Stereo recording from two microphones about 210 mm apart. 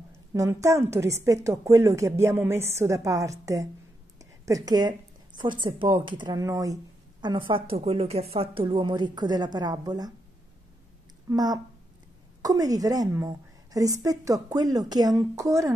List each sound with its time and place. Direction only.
0.3 s a woman's voice: 15° right (ahead or behind)
11.2 s a woman's voice: 20° right (ahead or behind)